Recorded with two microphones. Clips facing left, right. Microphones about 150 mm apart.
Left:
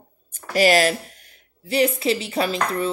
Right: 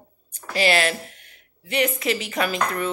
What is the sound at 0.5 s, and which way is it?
Speech, 40° left (ahead or behind).